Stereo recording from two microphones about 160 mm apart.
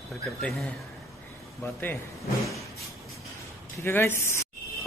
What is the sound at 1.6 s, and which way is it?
Speech, 15° left (ahead or behind).